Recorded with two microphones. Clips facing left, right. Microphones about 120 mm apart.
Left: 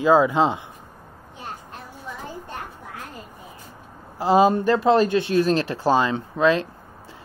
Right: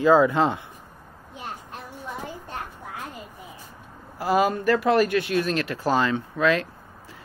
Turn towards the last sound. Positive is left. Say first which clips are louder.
# left 3 dB
turn(degrees=25)  # may be behind; listen again after turning